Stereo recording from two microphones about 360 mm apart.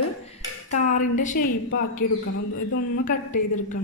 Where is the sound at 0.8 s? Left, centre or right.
Centre.